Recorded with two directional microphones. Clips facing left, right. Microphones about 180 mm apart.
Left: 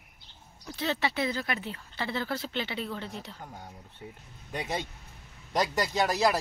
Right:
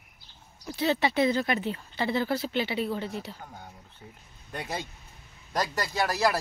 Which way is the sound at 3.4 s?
10° left (ahead or behind).